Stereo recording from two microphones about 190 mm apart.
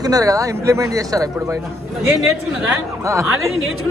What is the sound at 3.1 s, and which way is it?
Speech, 15° right (ahead or behind).